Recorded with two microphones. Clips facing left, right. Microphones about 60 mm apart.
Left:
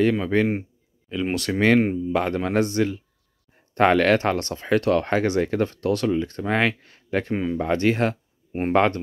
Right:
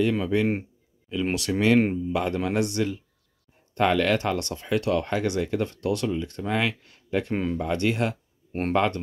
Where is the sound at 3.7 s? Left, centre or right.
Left.